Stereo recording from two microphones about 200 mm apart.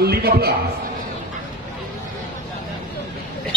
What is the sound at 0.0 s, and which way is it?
Speech, 50° right (ahead or behind).